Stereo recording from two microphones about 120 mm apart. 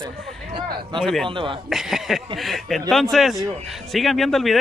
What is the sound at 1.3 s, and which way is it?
Speech, 45° right (ahead or behind).